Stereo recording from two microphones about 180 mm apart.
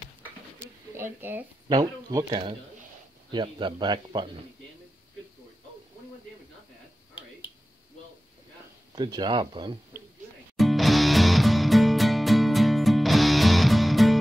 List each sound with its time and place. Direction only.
0.9 s speech: 10° right (ahead or behind)
8.9 s speech: 25° right (ahead or behind)
10.6 s music: centre (ahead or behind)